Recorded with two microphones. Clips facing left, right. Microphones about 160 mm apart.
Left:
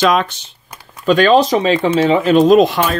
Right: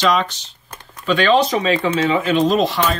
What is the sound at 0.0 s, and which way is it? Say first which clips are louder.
Speech: left 3 dB; 50° left (ahead or behind).